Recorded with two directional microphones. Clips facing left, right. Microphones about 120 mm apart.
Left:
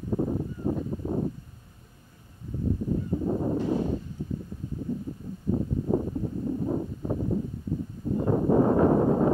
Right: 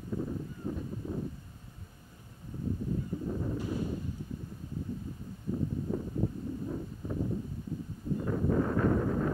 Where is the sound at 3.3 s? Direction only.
65° left (ahead or behind).